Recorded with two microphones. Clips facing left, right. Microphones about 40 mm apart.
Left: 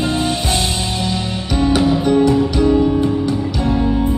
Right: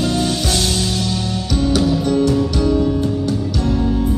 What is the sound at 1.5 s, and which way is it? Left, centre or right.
Music, left.